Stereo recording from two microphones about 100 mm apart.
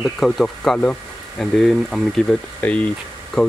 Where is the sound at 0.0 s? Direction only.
Centre (ahead or behind).